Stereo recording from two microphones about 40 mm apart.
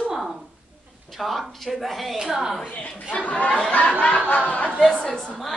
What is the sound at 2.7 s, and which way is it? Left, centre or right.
Speech, left.